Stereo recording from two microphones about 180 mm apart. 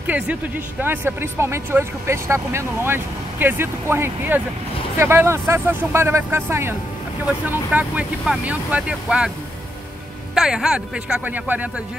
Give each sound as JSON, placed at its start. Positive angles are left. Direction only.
{"t": 0.0, "sound": "speech", "side_deg": -10}
{"t": 10.3, "sound": "speech", "side_deg": -5}